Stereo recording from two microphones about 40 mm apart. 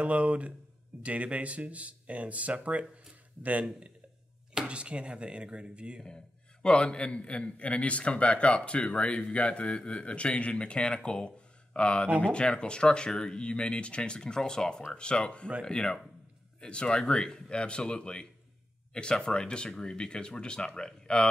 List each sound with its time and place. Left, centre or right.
0.0 s speech: right
4.6 s speech: right
6.0 s a man's voice: left
15.0 s a man's voice: left